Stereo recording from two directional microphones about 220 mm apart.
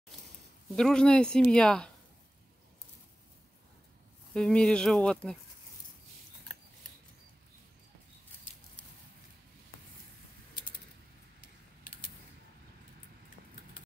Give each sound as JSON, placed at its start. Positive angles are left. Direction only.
{"t": 0.7, "sound": "speech", "side_deg": 5}
{"t": 4.3, "sound": "speech", "side_deg": 5}
{"t": 11.8, "sound": "a sound", "side_deg": 40}